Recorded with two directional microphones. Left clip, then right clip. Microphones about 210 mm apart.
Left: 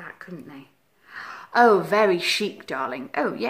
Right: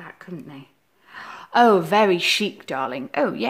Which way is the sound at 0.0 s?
50° right (ahead or behind).